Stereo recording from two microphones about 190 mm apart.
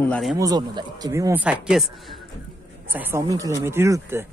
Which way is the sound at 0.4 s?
20° right (ahead or behind).